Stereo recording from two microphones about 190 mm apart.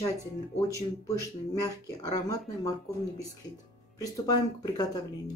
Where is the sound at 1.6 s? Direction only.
20° left (ahead or behind).